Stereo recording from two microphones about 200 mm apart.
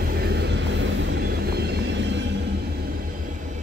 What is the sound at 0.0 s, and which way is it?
Vehicle, 55° right (ahead or behind).